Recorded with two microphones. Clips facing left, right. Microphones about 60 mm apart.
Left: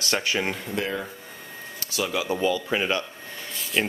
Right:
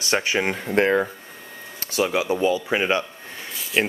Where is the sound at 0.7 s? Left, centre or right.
Right.